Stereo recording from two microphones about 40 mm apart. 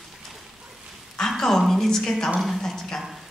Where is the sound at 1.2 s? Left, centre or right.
Centre.